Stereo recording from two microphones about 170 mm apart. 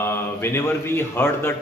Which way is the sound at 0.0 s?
15° left (ahead or behind).